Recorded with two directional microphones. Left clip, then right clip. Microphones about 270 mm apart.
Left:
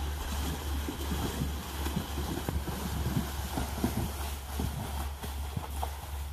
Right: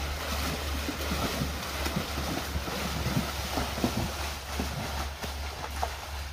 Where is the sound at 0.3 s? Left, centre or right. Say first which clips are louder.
Right 6 dB; centre.